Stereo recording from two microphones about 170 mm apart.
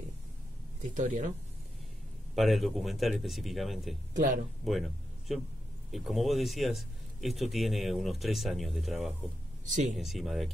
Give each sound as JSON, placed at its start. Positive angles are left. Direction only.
{"t": 0.9, "sound": "speech", "side_deg": -45}
{"t": 2.3, "sound": "speech", "side_deg": 0}
{"t": 4.1, "sound": "speech", "side_deg": -50}
{"t": 4.6, "sound": "speech", "side_deg": 0}
{"t": 9.7, "sound": "speech", "side_deg": -45}
{"t": 9.9, "sound": "speech", "side_deg": 0}